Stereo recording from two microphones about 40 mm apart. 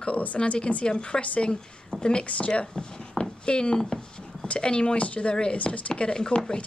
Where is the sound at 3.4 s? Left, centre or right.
Left.